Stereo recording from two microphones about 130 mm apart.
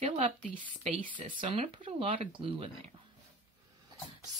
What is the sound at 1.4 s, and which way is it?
Speech, 45° right (ahead or behind).